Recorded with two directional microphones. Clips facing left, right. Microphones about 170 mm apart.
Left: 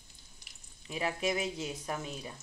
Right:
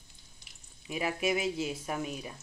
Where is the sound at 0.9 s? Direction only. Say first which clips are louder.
Right 2 dB; 10° right (ahead or behind).